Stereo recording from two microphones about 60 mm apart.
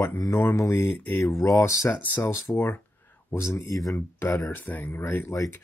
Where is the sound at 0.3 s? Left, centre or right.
Left.